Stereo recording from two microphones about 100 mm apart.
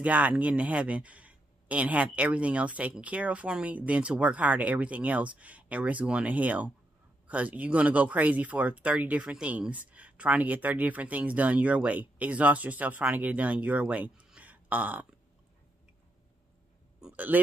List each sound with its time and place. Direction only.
0.0 s speech: 15° right (ahead or behind)
17.0 s speech: 15° right (ahead or behind)